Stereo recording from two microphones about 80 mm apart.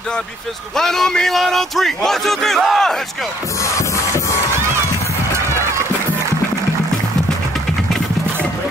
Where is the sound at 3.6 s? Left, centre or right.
Left.